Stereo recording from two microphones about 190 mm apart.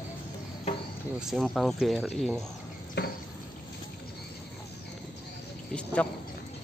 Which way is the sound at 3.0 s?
60° left (ahead or behind).